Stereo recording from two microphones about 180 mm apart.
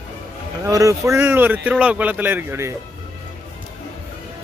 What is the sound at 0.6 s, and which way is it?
Speech, 20° right (ahead or behind).